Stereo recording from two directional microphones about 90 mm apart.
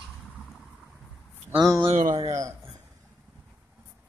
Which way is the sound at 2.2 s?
35° right (ahead or behind).